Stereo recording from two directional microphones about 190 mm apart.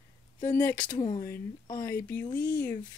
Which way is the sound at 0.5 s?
10° left (ahead or behind).